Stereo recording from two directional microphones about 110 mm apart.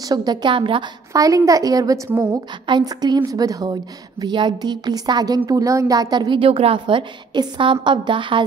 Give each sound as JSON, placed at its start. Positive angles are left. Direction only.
{"t": 0.0, "sound": "a woman's voice", "side_deg": -35}
{"t": 1.1, "sound": "a woman's voice", "side_deg": -30}